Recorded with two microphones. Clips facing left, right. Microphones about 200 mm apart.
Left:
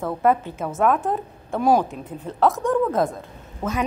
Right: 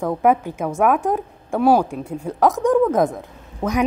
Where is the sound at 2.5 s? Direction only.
Centre (ahead or behind).